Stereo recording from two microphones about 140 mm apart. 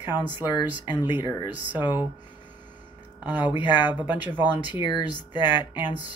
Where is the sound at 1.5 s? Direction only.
15° right (ahead or behind).